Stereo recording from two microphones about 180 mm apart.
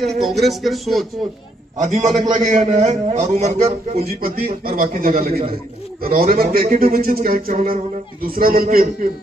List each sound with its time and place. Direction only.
0.0 s speech: centre (ahead or behind)
1.9 s a man's voice: 40° right (ahead or behind)
4.0 s a man's voice: 55° right (ahead or behind)